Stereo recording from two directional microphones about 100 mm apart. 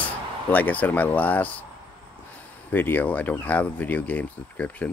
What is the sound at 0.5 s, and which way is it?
Speech, 15° left (ahead or behind).